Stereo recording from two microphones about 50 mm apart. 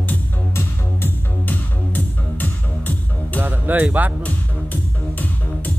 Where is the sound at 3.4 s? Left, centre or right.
Right.